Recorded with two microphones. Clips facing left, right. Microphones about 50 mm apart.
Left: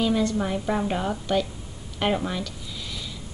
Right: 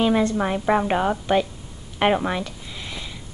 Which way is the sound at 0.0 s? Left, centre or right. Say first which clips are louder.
Right 4 dB; right.